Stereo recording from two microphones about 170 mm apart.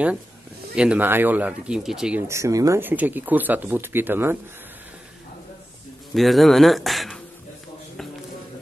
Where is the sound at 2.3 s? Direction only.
20° right (ahead or behind).